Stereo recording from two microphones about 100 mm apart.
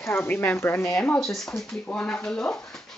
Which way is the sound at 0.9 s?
10° left (ahead or behind).